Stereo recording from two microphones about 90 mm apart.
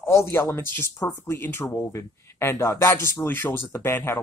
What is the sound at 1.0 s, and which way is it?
Speech, 40° left (ahead or behind).